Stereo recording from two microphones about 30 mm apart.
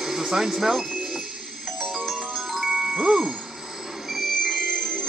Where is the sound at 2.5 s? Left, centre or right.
Centre.